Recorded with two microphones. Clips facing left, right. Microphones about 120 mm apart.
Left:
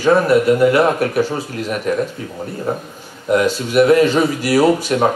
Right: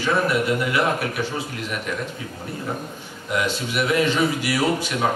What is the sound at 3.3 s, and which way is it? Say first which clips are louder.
A man's voice: left 10 dB; 40° left (ahead or behind).